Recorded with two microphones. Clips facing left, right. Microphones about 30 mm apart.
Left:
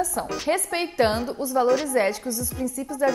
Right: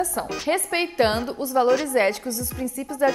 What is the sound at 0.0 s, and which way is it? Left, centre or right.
A woman's voice, centre.